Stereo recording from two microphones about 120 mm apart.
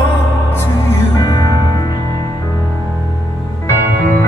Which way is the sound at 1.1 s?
35° left (ahead or behind).